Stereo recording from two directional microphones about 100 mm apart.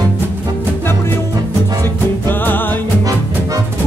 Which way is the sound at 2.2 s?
20° left (ahead or behind).